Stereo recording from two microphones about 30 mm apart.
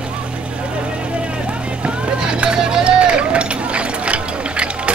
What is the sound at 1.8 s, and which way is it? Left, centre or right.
Vehicle, right.